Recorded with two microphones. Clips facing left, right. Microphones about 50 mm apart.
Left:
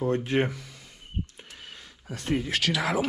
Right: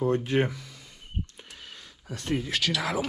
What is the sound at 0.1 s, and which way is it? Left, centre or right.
Speech, left.